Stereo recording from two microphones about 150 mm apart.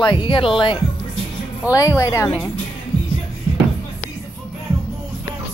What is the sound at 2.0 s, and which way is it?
Speech, 20° left (ahead or behind).